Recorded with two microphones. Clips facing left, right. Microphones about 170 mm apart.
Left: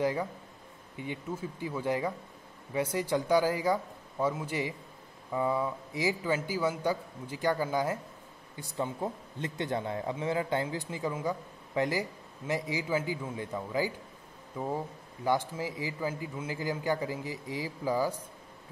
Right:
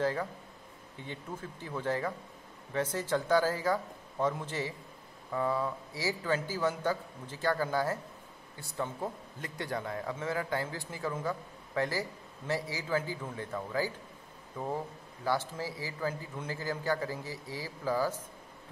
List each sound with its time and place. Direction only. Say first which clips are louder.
0.0 s a man's voice: left 2 dB; 15° left (ahead or behind)